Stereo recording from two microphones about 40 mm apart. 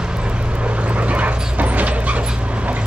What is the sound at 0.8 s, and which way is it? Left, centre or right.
Dog, right.